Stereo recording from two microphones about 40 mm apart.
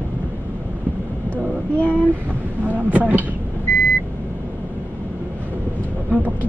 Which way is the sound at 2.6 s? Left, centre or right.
Right.